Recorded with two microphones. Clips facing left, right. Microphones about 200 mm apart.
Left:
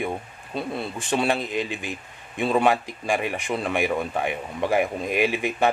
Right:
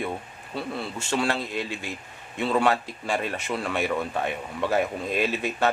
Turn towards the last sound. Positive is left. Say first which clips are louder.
# left 3 dB
turn(degrees=15)  # may be behind; listen again after turning